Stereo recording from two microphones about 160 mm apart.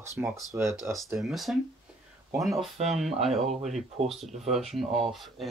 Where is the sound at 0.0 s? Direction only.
15° right (ahead or behind).